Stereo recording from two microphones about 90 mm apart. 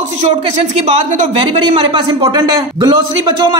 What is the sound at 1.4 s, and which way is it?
Speech, 70° right (ahead or behind).